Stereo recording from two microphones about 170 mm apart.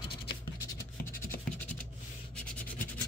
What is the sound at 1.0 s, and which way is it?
Scratch, 15° left (ahead or behind).